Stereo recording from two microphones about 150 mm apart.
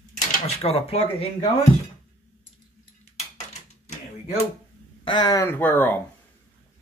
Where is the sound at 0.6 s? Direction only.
40° left (ahead or behind).